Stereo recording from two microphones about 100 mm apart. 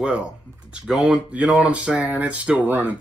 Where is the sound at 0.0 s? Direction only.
10° right (ahead or behind).